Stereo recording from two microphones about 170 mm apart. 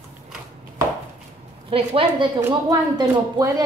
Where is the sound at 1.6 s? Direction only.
30° right (ahead or behind).